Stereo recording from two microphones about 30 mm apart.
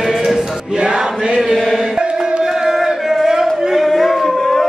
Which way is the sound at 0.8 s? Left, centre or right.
Right.